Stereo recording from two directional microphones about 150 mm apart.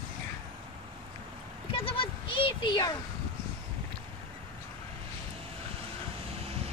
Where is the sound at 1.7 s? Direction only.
35° left (ahead or behind).